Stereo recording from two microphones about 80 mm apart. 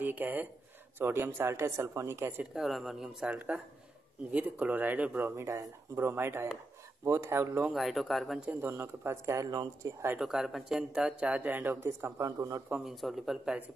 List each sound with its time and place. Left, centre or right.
0.0 s speech: right
2.5 s speech: centre
3.3 s speech: centre
5.3 s speech: right
7.7 s speech: centre
8.5 s speech: right
10.2 s speech: centre; by 12.6 s right
12.8 s speech: centre